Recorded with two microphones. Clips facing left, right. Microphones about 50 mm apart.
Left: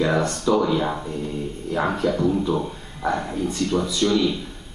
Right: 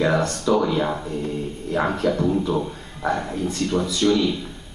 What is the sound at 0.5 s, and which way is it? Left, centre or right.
Speech, centre.